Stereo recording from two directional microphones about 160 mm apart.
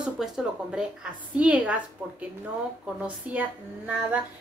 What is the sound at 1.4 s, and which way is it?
Speech, 10° right (ahead or behind).